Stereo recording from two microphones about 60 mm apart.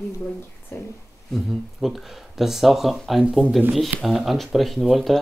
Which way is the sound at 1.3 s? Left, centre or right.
Centre.